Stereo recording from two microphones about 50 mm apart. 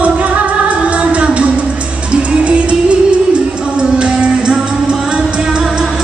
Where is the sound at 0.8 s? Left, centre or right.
Right.